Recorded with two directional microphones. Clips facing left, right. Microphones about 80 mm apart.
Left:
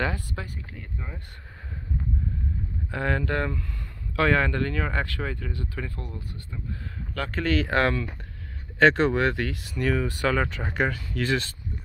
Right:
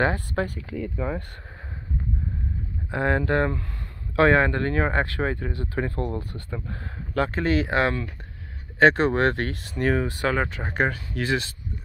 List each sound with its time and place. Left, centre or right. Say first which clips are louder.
0.6 s speech: right 10 dB; right
2.9 s speech: right 4 dB; right
7.2 s speech: right 3 dB; right
9.1 s speech: right 2 dB; right